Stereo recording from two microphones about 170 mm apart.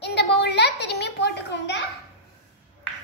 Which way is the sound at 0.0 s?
85° left.